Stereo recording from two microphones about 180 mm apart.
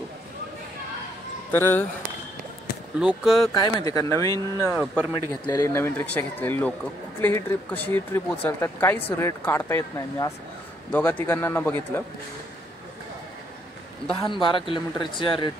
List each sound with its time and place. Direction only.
1.5 s speech: 10° left (ahead or behind)
3.0 s speech: 5° right (ahead or behind)
3.5 s speech: 20° left (ahead or behind)
5.0 s speech: 10° right (ahead or behind)
5.5 s speech: 15° left (ahead or behind)
14.2 s speech: 25° left (ahead or behind)